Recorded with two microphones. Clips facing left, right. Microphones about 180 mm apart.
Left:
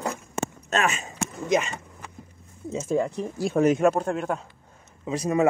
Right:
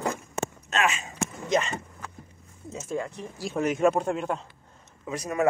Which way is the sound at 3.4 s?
55° left (ahead or behind).